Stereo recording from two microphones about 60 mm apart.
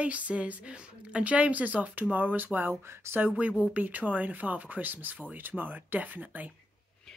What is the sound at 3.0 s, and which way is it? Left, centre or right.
Speech, right.